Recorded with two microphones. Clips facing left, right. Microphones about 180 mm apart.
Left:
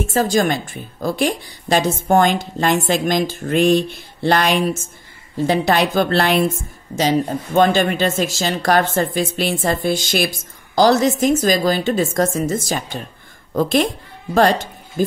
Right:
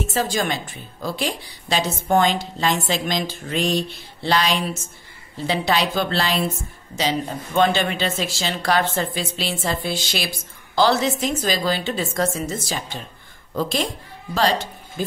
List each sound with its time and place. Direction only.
0.0 s a woman's voice: 45° left (ahead or behind)
7.0 s a woman's voice: 45° left (ahead or behind)